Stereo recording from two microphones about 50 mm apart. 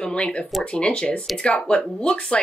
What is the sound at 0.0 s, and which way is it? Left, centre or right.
Speech, centre.